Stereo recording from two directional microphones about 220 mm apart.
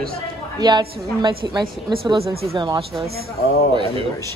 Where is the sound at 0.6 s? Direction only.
20° right (ahead or behind).